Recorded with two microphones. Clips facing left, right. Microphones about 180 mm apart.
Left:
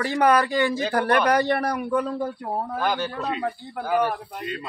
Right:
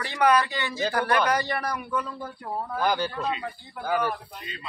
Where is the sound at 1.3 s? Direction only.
60° left (ahead or behind).